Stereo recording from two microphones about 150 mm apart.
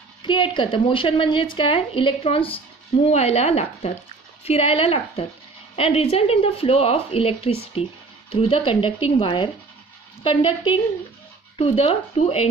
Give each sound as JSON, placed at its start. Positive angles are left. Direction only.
{"t": 0.2, "sound": "a woman's voice", "side_deg": 30}